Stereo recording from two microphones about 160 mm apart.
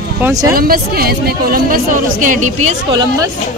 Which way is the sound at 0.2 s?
20° right (ahead or behind).